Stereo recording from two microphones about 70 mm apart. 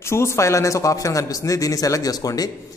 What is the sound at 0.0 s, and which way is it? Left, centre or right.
A man's voice, left.